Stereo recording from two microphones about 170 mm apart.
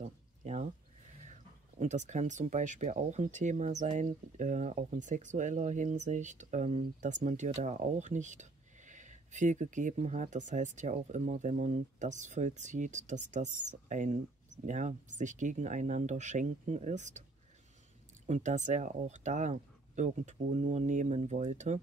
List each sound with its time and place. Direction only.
0.0 s a sound: 40° right (ahead or behind)
1.8 s speech: 45° right (ahead or behind)
18.2 s speech: 45° right (ahead or behind)